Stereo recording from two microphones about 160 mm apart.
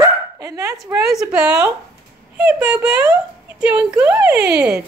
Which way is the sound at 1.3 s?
5° right (ahead or behind).